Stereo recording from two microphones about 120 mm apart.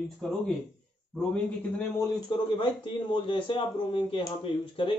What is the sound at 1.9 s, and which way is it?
Speech, 35° left (ahead or behind).